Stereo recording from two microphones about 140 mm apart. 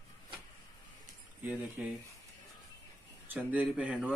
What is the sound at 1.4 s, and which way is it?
Speech, 10° right (ahead or behind).